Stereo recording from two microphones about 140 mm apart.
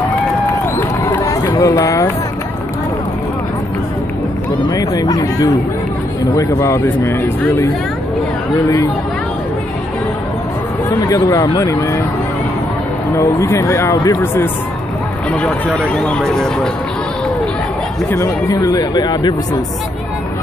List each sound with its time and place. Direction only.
0.7 s run: 25° left (ahead or behind)
4.6 s a sound: 25° left (ahead or behind)
6.3 s speech: 20° left (ahead or behind)
10.9 s speech: 25° left (ahead or behind)
13.1 s speech: 20° left (ahead or behind); by 16.6 s 5° left (ahead or behind)
18.1 s speech: 20° left (ahead or behind)